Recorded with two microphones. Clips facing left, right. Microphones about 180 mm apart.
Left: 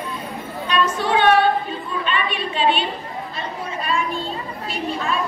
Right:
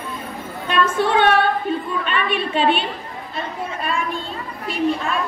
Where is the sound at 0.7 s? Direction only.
55° right (ahead or behind).